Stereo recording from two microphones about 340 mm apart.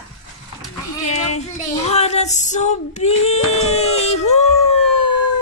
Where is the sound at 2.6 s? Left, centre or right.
Centre.